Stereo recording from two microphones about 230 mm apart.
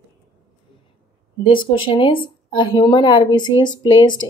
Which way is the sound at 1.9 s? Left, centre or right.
Left.